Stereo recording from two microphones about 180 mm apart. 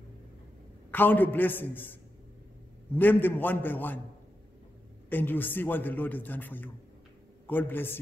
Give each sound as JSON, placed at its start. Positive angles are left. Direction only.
{"t": 0.9, "sound": "a man's voice", "side_deg": 10}
{"t": 5.1, "sound": "a man's voice", "side_deg": 10}